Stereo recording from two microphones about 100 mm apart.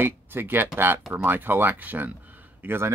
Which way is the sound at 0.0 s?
20° right (ahead or behind).